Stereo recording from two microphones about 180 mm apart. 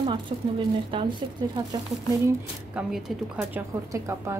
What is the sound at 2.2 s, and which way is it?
A woman's voice, 5° right (ahead or behind).